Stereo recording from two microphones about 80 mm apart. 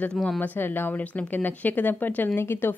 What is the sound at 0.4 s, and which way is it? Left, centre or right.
Speech, left.